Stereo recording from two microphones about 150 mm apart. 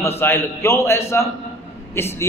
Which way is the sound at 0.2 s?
15° left (ahead or behind).